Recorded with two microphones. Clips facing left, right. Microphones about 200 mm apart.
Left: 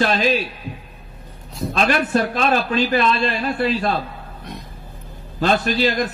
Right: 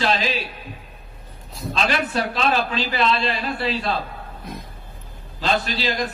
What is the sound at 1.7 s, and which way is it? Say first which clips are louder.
A man's voice: left 4 dB; 50° left (ahead or behind).